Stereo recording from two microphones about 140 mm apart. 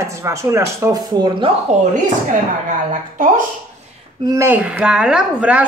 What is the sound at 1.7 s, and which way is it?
Speech, 55° right (ahead or behind).